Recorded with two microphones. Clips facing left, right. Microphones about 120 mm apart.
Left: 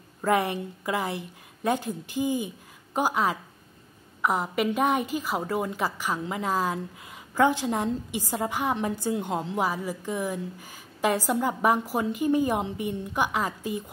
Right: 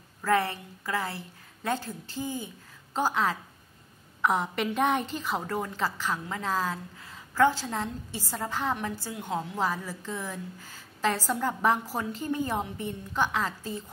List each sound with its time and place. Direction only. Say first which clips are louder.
0.2 s a woman's voice: left 2 dB; 15° left (ahead or behind)